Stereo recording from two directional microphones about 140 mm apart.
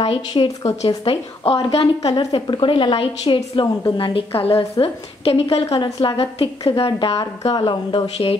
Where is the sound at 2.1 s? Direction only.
30° left (ahead or behind).